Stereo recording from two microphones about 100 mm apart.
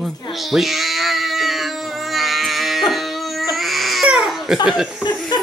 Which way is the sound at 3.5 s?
Centre (ahead or behind).